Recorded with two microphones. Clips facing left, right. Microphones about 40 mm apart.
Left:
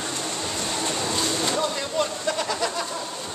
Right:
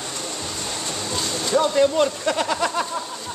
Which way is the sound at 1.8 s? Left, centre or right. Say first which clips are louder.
Right 8 dB; right.